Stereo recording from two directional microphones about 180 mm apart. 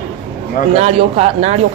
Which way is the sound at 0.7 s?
35° right (ahead or behind).